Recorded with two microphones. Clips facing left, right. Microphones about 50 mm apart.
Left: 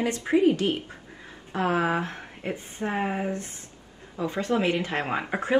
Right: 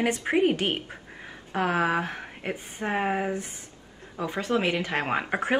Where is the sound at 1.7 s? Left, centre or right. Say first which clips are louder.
Left 1 dB; right.